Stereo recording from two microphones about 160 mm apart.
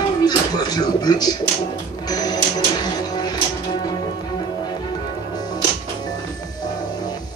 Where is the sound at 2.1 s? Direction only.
25° left (ahead or behind).